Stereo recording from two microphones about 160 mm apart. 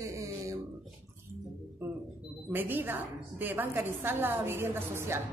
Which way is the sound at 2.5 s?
10° right (ahead or behind).